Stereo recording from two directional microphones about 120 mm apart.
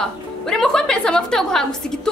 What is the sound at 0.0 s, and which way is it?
A woman's voice, 5° left (ahead or behind).